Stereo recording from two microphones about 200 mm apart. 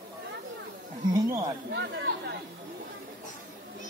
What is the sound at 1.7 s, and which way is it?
Chatter, 60° right (ahead or behind).